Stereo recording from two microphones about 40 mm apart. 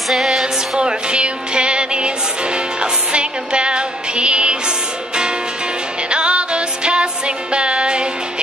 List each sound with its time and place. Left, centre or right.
0.1 s music: centre
0.7 s music: right